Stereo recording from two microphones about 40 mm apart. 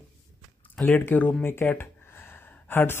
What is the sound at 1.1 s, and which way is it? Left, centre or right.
Speech, left.